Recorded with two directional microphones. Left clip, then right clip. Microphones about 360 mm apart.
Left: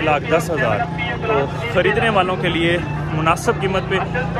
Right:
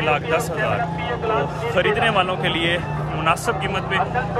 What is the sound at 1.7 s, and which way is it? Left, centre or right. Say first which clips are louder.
Speech: left 2 dB; centre.